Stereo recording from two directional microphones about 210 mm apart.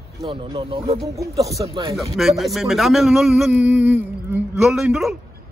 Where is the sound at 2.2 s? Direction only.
Centre (ahead or behind).